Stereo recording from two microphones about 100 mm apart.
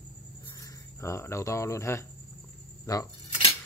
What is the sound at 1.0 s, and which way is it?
Speech, 30° left (ahead or behind).